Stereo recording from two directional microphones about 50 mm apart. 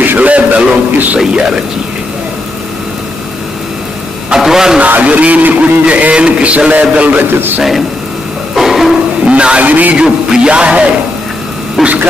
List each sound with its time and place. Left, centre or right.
0.0 s a sound: right
0.9 s a man's voice: right
1.2 s speech: centre
4.3 s a sound: centre
4.7 s a man's voice: right
7.2 s a man's voice: right
8.5 s a sound: centre
9.2 s a man's voice: right
9.9 s a man's voice: centre
11.8 s speech: centre